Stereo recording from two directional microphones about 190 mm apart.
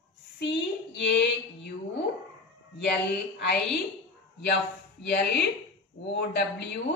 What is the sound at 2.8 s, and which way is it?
Speech, 60° left (ahead or behind).